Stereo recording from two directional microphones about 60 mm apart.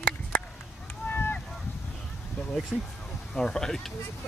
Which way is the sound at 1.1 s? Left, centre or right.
Left.